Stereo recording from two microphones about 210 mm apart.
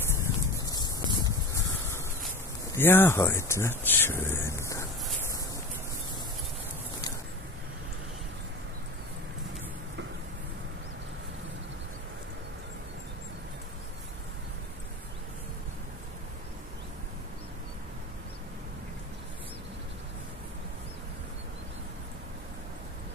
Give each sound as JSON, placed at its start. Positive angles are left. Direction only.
{"t": 0.2, "sound": "wind noise", "side_deg": 15}
{"t": 1.2, "sound": "a sound", "side_deg": 15}
{"t": 2.7, "sound": "speech", "side_deg": 10}